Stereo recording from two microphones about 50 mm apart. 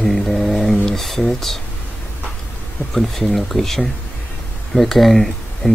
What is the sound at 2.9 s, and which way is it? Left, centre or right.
Speech, centre.